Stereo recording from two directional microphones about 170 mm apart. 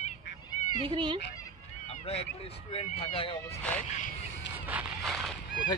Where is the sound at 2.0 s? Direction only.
35° left (ahead or behind).